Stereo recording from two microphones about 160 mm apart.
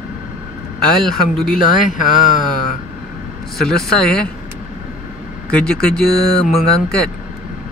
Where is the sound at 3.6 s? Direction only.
5° left (ahead or behind).